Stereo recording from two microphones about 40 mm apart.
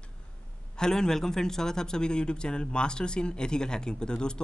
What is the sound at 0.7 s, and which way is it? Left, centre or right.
A man's voice, centre.